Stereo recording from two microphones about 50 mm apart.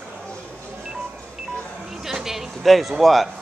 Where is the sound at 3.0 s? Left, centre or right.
Centre.